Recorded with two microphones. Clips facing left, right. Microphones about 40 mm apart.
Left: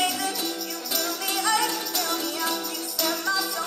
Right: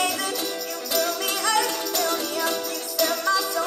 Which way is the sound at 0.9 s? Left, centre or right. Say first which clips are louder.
Right 4 dB; right.